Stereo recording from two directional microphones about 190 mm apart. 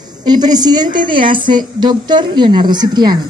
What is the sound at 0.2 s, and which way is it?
A woman's voice, 20° right (ahead or behind).